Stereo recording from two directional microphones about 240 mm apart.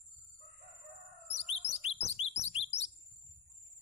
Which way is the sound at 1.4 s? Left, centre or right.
Left.